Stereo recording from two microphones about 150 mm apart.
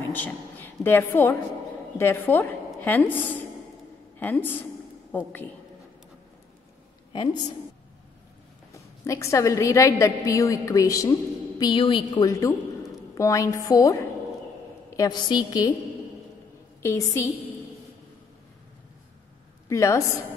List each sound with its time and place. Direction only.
0.1 s a woman's voice: 10° left (ahead or behind)
8.7 s a woman's voice: 20° left (ahead or behind)
16.8 s a woman's voice: 20° left (ahead or behind)
19.7 s a woman's voice: 20° left (ahead or behind)